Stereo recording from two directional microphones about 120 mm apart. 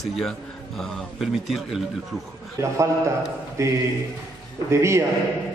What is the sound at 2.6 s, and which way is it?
A man's voice, 25° right (ahead or behind).